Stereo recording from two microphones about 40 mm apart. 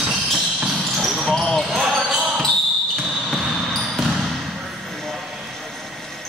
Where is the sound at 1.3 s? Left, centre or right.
Centre.